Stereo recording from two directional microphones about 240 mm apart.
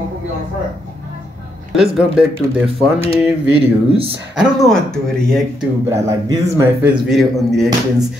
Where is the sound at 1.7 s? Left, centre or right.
Centre.